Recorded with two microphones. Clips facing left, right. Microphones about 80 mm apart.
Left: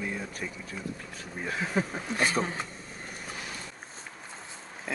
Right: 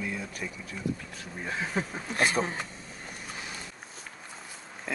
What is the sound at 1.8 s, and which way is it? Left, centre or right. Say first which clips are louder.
Speech: even; centre.